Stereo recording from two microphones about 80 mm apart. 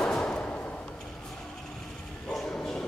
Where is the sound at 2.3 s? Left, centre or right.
Centre.